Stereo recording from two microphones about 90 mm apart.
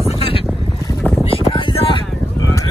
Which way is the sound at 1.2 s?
80° left.